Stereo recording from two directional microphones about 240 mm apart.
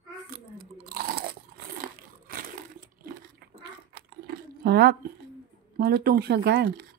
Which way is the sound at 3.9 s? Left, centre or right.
Right.